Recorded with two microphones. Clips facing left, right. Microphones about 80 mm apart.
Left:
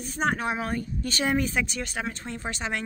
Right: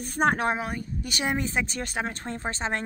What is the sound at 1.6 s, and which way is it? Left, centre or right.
Speech, right.